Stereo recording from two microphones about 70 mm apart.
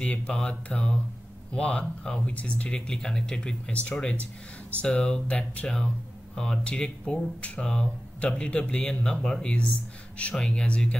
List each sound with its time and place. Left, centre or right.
0.0 s speech: centre